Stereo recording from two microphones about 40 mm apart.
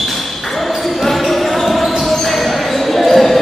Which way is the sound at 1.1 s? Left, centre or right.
Centre.